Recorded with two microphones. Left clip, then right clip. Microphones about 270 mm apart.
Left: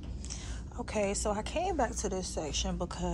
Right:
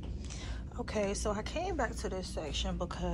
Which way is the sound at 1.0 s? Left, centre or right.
Centre.